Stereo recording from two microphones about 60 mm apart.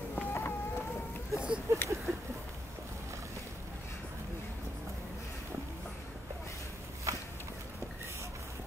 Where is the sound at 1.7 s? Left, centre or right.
Right.